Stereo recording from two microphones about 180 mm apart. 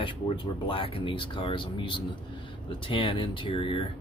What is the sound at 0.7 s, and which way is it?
Speech, 30° left (ahead or behind).